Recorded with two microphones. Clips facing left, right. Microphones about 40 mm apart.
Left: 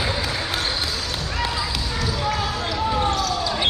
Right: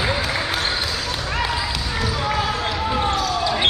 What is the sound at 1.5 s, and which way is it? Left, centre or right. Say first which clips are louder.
Basketball bounce: right 2 dB; right.